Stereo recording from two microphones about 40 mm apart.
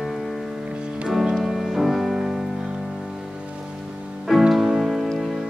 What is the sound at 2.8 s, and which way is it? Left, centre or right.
Music, centre.